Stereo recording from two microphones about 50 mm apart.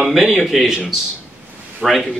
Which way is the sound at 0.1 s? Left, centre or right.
Centre.